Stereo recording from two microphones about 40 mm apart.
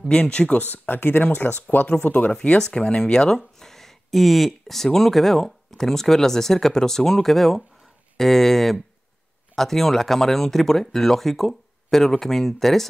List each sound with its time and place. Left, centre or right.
0.1 s speech: left
0.8 s speech: left
2.6 s speech: centre